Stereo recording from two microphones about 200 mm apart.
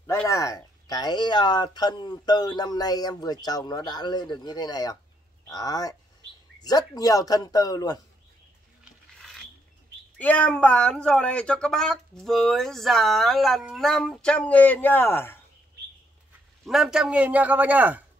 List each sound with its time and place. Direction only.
0.0 s speech: 15° left (ahead or behind)
10.1 s speech: 5° left (ahead or behind)
16.6 s a man's voice: centre (ahead or behind)